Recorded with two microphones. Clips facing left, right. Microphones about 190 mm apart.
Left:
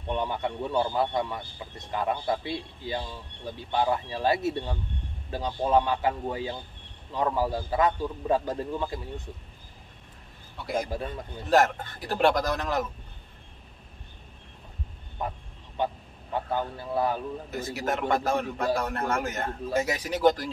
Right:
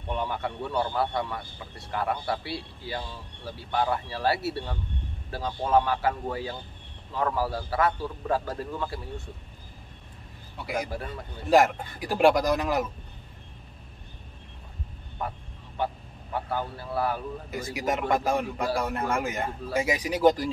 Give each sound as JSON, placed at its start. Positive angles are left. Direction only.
{"t": 0.1, "sound": "a man's voice", "side_deg": 20}
{"t": 11.5, "sound": "a man's voice", "side_deg": -10}
{"t": 15.2, "sound": "speech", "side_deg": 20}
{"t": 17.5, "sound": "a man's voice", "side_deg": -10}